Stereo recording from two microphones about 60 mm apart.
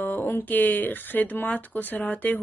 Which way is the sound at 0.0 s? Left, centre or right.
Left.